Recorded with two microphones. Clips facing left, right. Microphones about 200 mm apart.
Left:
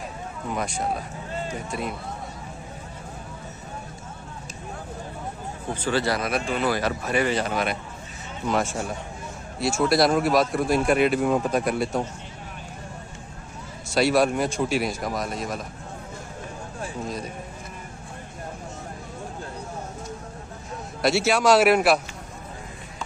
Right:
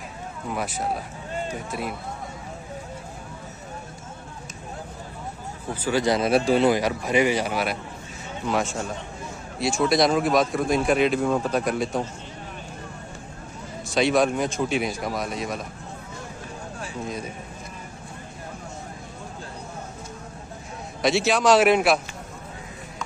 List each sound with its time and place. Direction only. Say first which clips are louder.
0.5 s speech: even; 5° right (ahead or behind)
5.8 s speech: right 3 dB; 10° right (ahead or behind); by 6.7 s 30° right (ahead or behind)
6.7 s speech: right 3 dB; 15° right (ahead or behind)
9.6 s speech: even; 5° left (ahead or behind)
13.9 s speech: even; 5° left (ahead or behind)
21.0 s speech: even; 5° left (ahead or behind)